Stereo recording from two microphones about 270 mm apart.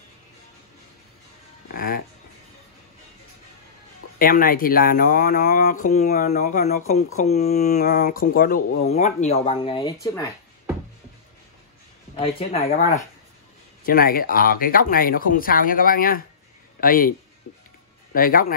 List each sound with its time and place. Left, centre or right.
1.7 s speech: left
4.2 s speech: left
12.2 s speech: left
13.8 s speech: left
18.1 s speech: left